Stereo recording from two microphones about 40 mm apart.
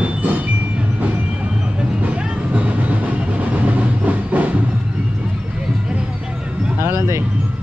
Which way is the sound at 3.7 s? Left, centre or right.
Right.